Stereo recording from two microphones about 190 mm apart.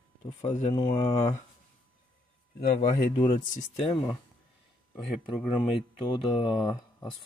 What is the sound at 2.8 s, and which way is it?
Speech, 35° left (ahead or behind).